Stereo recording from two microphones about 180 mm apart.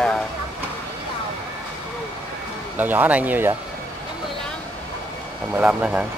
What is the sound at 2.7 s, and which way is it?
Speech, 10° right (ahead or behind).